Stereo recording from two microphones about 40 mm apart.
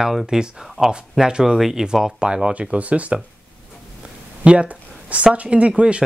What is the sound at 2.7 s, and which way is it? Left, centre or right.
Speech, right.